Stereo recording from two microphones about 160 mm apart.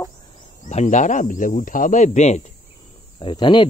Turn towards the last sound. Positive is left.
turn(degrees=30)  # may be behind; listen again after turning